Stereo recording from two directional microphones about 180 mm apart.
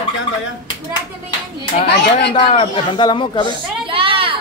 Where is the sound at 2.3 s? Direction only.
30° left (ahead or behind).